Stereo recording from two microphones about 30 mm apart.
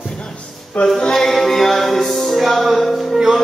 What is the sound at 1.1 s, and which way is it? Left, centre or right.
Music, centre.